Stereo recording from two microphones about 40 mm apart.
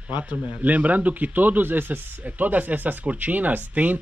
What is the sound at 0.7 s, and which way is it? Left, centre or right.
Speech, right.